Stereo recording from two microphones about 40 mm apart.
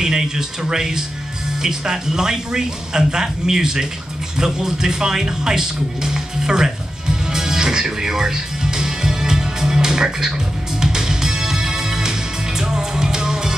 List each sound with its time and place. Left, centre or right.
0.0 s speech: centre
4.4 s music: centre